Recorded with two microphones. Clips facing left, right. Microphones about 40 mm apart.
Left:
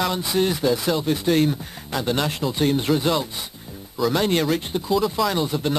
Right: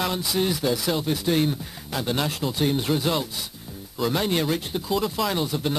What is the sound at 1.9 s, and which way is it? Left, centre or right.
Speech, centre.